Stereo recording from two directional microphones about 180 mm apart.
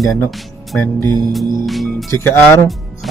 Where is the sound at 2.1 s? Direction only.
15° left (ahead or behind).